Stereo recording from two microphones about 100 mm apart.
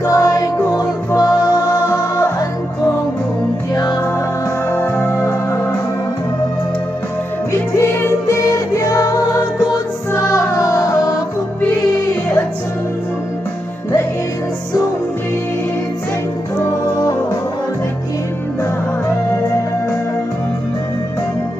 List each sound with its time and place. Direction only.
0.0 s music: 35° left (ahead or behind)
4.6 s music: 20° left (ahead or behind)
7.8 s music: 25° left (ahead or behind)
16.5 s music: 35° left (ahead or behind)